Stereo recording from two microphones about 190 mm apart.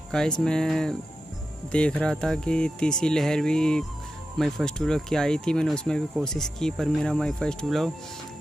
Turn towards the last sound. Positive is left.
turn(degrees=0)  # may be behind; listen again after turning